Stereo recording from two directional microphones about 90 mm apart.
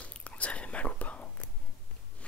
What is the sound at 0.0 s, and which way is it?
Whispering, 15° left (ahead or behind).